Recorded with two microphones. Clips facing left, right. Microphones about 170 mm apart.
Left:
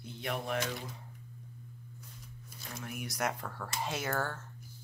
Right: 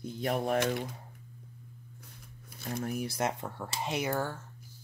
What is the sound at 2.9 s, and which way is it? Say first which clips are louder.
Speech: right 2 dB; 30° right (ahead or behind).